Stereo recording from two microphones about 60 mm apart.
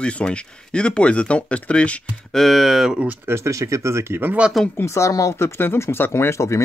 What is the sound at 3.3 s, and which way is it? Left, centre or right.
Speech, right.